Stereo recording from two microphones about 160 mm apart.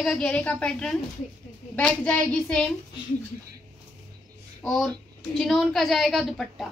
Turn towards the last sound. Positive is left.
turn(degrees=5)  # may be behind; listen again after turning